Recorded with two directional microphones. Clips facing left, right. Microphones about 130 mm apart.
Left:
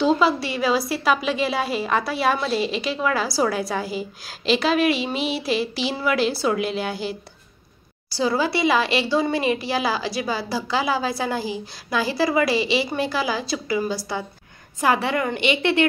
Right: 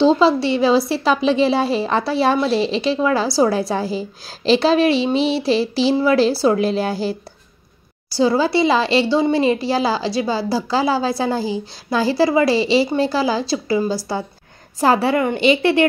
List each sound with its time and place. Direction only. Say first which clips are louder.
0.0 s a woman's voice: right 5 dB; 30° right (ahead or behind)
8.2 s a woman's voice: right 5 dB; 30° right (ahead or behind)